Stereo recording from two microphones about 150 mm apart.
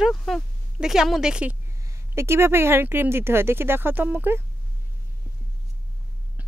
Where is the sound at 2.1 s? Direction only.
15° right (ahead or behind).